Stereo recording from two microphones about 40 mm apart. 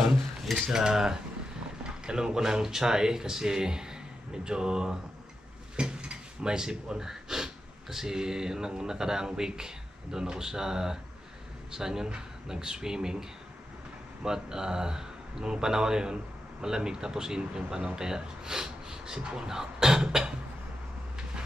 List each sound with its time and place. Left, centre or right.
0.0 s cutlery: centre
1.9 s speech: centre